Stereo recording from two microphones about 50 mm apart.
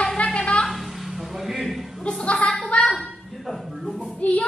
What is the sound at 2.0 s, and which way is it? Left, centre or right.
Speech, centre.